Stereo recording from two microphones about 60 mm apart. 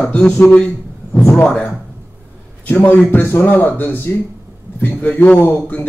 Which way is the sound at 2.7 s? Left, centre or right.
Left.